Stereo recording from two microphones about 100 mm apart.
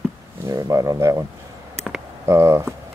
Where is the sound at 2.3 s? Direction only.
30° right (ahead or behind).